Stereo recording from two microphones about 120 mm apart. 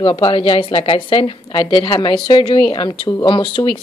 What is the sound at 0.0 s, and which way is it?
A woman's voice, 50° left (ahead or behind).